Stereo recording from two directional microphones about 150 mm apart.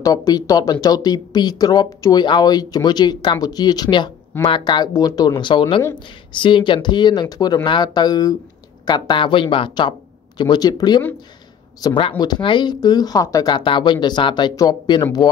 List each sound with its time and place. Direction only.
0.0 s speech: 25° left (ahead or behind)